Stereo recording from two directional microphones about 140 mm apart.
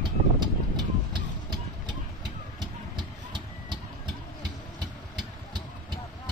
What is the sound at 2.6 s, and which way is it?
Vehicle, 35° right (ahead or behind).